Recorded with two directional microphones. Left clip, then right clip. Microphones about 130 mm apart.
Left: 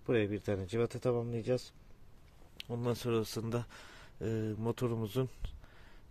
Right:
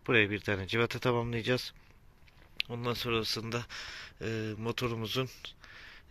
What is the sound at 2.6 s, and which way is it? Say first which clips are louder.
Speech: right 3 dB; 40° left (ahead or behind).